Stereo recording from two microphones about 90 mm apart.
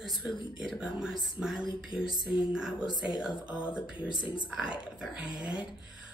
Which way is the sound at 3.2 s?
10° right (ahead or behind).